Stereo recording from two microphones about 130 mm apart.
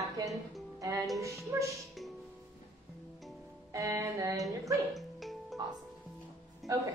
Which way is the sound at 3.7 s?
25° right (ahead or behind).